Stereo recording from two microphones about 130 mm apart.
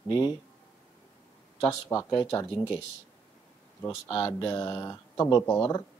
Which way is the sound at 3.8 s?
30° left (ahead or behind).